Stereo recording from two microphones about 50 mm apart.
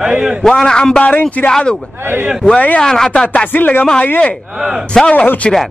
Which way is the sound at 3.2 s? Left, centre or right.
Left.